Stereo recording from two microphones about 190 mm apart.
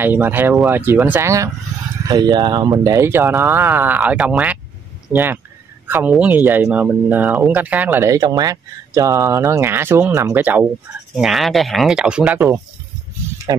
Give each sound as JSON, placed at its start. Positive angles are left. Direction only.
{"t": 0.0, "sound": "speech", "side_deg": -10}